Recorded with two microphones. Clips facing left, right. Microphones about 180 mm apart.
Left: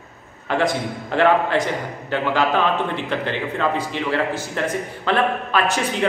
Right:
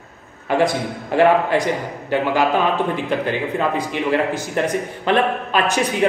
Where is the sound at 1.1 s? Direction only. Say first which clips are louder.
Right 2 dB; 10° right (ahead or behind).